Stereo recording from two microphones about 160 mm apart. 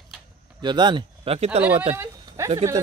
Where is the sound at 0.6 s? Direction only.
30° right (ahead or behind).